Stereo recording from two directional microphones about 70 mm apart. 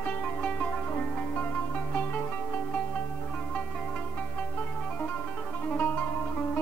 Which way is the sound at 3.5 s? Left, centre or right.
Centre.